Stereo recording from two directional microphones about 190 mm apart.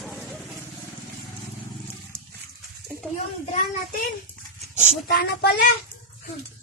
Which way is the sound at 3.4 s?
35° left (ahead or behind).